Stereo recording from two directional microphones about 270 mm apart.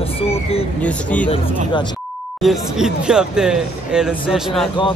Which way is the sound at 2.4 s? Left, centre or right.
Centre.